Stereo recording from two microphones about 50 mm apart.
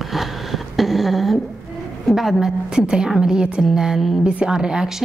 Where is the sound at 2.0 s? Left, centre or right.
Centre.